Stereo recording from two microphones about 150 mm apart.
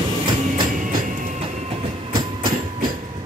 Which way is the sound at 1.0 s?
55° right (ahead or behind).